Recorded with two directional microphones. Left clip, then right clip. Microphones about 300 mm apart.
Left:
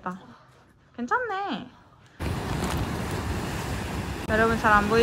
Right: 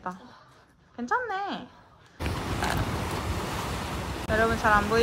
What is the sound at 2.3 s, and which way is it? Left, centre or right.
Boat, centre.